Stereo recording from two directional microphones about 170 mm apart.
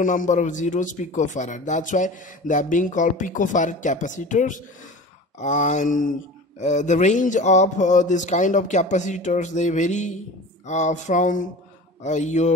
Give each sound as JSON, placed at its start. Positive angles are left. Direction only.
{"t": 0.0, "sound": "a man's voice", "side_deg": 50}